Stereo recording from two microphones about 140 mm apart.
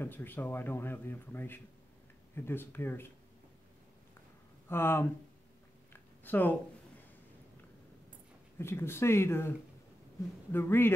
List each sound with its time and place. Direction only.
0.0 s speech: 15° left (ahead or behind)
4.6 s speech: 15° left (ahead or behind)
5.9 s a sound: 15° left (ahead or behind)
8.5 s speech: 20° left (ahead or behind)
10.5 s speech: 15° left (ahead or behind)